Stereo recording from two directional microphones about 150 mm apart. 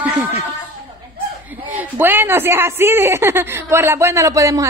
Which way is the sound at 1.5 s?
10° right (ahead or behind).